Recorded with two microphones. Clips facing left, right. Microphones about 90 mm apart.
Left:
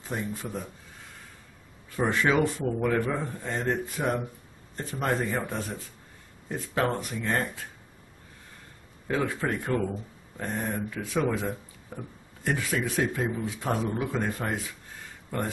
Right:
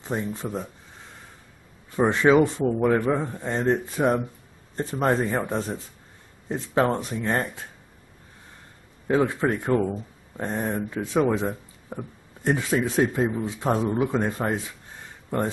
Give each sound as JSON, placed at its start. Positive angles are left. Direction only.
{"t": 0.0, "sound": "a man's voice", "side_deg": -25}
{"t": 1.9, "sound": "a man's voice", "side_deg": -25}
{"t": 9.0, "sound": "a man's voice", "side_deg": -25}